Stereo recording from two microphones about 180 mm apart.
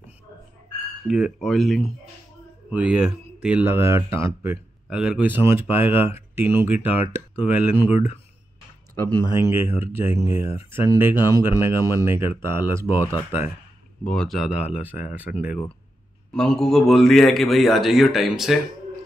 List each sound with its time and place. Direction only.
1.0 s a man's voice: centre (ahead or behind)
4.8 s speech: 5° right (ahead or behind)
7.9 s speech: 35° left (ahead or behind)
9.1 s speech: 15° right (ahead or behind)
14.0 s a man's voice: 5° left (ahead or behind)
16.3 s a man's voice: 5° left (ahead or behind)